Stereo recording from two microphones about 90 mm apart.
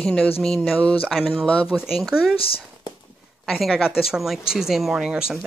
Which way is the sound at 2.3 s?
90° left.